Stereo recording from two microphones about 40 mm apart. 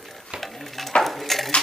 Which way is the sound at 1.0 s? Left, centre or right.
Centre.